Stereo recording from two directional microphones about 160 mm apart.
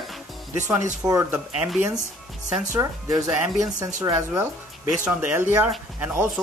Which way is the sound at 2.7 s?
20° right (ahead or behind).